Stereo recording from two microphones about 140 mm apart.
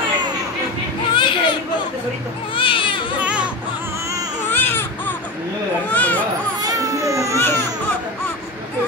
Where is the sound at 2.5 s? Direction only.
35° left (ahead or behind).